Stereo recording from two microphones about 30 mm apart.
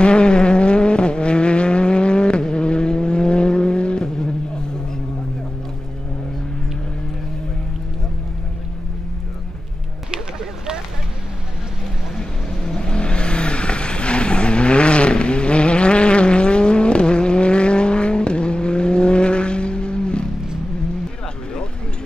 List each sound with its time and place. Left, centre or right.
0.0 s vehicle: left
12.2 s vehicle: left